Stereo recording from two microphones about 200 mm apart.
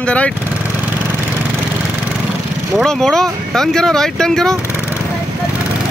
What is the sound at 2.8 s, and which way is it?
Speech, centre (ahead or behind).